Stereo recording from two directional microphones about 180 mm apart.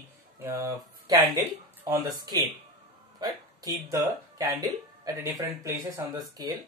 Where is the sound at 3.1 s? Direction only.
20° right (ahead or behind).